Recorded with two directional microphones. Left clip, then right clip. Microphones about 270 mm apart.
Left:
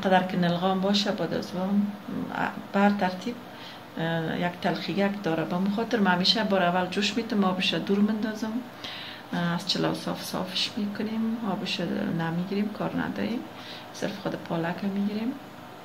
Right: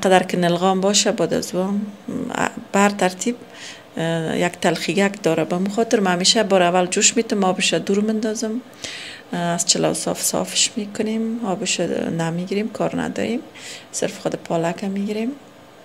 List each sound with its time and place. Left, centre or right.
0.0 s speech: right